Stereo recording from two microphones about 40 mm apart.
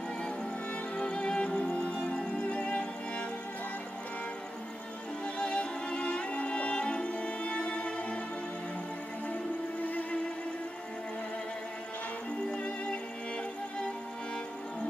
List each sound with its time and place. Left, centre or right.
0.9 s music: left
5.2 s music: left
6.0 s music: left